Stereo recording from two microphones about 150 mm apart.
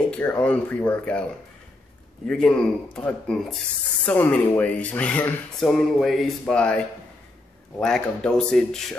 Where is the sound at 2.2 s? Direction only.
5° left (ahead or behind).